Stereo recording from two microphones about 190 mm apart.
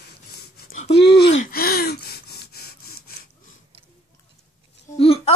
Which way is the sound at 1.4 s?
55° left (ahead or behind).